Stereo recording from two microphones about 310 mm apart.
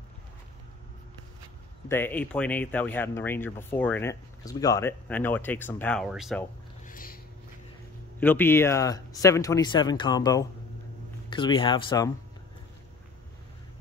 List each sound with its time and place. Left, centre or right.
1.9 s speech: centre
6.8 s a sound: left
8.2 s speech: centre